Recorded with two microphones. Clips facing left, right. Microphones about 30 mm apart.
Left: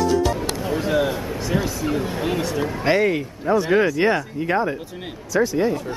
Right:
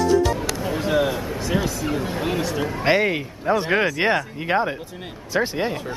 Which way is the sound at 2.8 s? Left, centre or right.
Centre.